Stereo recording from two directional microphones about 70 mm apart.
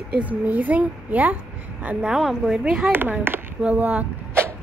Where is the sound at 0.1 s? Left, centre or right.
Right.